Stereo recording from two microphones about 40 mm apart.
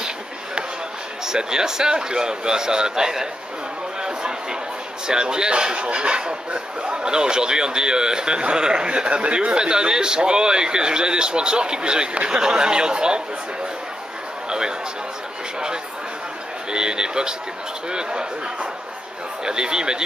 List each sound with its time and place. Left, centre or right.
1.2 s a man's voice: centre
4.0 s a sound: centre
5.0 s speech: centre
16.7 s speech: centre
19.4 s speech: centre